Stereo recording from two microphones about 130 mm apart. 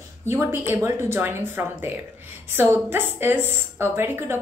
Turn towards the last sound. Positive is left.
turn(degrees=-15)  # may be behind; listen again after turning